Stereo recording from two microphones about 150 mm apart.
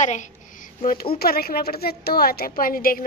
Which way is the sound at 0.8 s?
90° left.